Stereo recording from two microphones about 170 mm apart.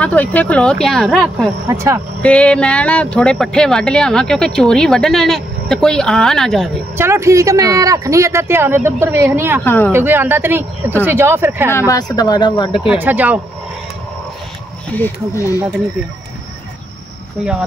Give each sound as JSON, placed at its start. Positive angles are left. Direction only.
{"t": 0.0, "sound": "speech", "side_deg": 10}
{"t": 1.7, "sound": "speech", "side_deg": -15}
{"t": 2.2, "sound": "speech", "side_deg": 5}
{"t": 7.0, "sound": "speech", "side_deg": -15}
{"t": 9.7, "sound": "speech", "side_deg": 10}
{"t": 9.9, "sound": "speech", "side_deg": -10}
{"t": 11.9, "sound": "speech", "side_deg": 20}
{"t": 12.8, "sound": "speech", "side_deg": -10}
{"t": 15.0, "sound": "speech", "side_deg": 20}